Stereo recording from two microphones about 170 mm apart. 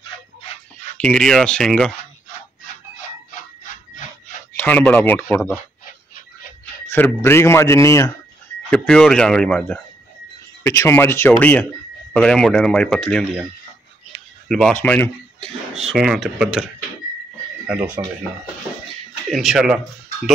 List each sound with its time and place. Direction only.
1.0 s speech: 5° left (ahead or behind)
3.3 s a sound: 50° left (ahead or behind)
4.6 s speech: 10° left (ahead or behind)
6.9 s speech: 15° left (ahead or behind)
8.6 s speech: 5° left (ahead or behind)
14.5 s speech: 5° left (ahead or behind)
15.9 s speech: centre (ahead or behind)
17.7 s speech: 10° right (ahead or behind)
19.3 s speech: centre (ahead or behind)